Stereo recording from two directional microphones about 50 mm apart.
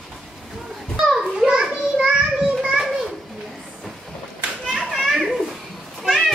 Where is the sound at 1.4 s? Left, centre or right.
Centre.